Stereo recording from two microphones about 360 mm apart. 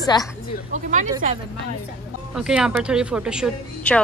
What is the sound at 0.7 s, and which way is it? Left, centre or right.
Speech, right.